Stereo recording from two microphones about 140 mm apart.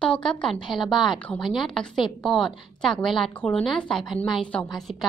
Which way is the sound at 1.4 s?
Centre (ahead or behind).